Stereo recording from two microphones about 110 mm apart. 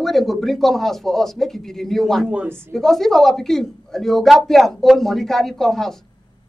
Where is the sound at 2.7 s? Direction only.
5° left (ahead or behind).